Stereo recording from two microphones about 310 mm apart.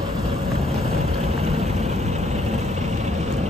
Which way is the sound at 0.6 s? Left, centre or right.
Centre.